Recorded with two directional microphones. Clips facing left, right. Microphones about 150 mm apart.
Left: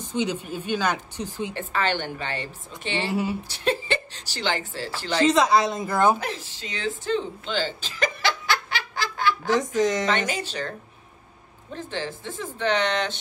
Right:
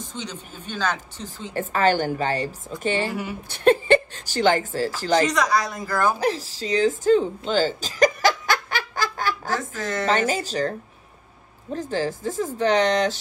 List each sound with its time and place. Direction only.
0.1 s speech: 10° left (ahead or behind)
1.5 s a woman's voice: 40° right (ahead or behind)
3.1 s a woman's voice: 25° left (ahead or behind)
3.4 s speech: 50° right (ahead or behind)
5.2 s a woman's voice: 25° left (ahead or behind)
6.1 s a sound: 35° right (ahead or behind)
9.6 s speech: 15° left (ahead or behind)
10.0 s speech: 40° right (ahead or behind)
11.7 s speech: 40° right (ahead or behind)